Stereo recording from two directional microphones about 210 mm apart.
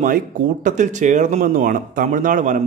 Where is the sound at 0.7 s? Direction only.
35° right (ahead or behind).